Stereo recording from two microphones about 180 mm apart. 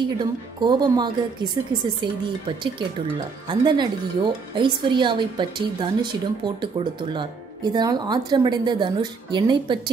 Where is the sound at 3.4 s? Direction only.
25° right (ahead or behind).